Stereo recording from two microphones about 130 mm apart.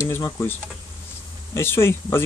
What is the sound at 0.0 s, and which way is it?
Speech, 20° left (ahead or behind).